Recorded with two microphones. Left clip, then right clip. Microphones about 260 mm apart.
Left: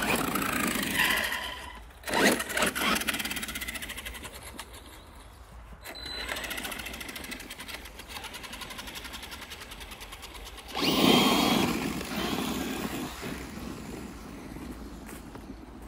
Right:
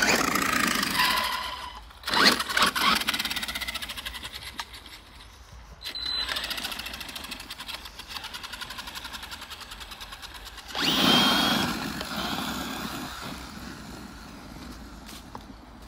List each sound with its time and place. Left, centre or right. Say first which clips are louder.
0.0 s vehicle: right 5 dB; right
2.0 s engine: right 4 dB; centre
5.9 s sewing machine: right 6 dB; centre
10.7 s drill: right 2 dB; centre
11.9 s vehicle: right 1 dB; centre
12.4 s vehicle: right 1 dB; right